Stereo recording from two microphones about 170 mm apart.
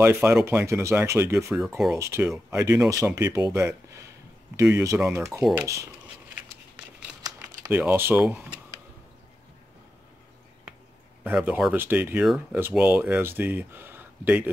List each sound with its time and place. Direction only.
0.0 s speech: 15° right (ahead or behind)
7.2 s typing: 20° right (ahead or behind)
7.7 s speech: 10° right (ahead or behind)
11.2 s speech: 5° right (ahead or behind)